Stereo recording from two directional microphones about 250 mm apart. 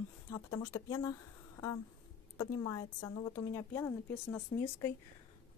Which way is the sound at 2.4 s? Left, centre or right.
Centre.